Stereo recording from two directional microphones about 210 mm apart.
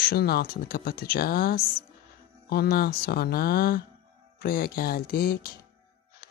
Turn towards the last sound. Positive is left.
turn(degrees=45)  # may be behind; listen again after turning